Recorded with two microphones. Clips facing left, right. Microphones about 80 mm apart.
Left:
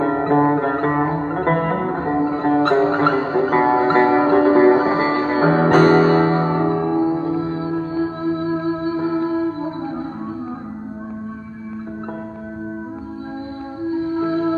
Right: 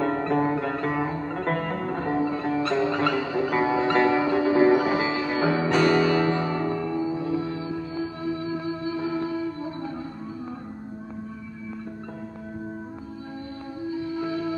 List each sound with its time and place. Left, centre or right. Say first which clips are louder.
0.0 s music: left 7 dB; left
2.0 s music: left 6 dB; left
13.8 s music: left 8 dB; left